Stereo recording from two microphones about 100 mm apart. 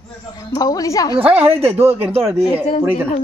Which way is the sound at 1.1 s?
75° right (ahead or behind).